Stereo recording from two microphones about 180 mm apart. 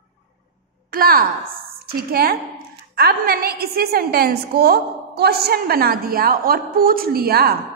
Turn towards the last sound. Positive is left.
turn(degrees=-55)  # may be behind; listen again after turning